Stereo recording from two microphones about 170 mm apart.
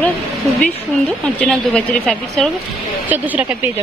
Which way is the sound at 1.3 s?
5° left (ahead or behind).